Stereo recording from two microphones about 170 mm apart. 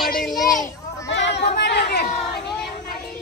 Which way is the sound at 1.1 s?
90° left.